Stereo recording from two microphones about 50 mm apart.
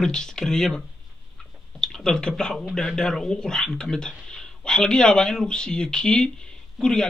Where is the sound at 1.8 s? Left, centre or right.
Centre.